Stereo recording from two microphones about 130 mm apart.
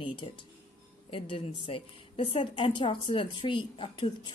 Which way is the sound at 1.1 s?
45° left (ahead or behind).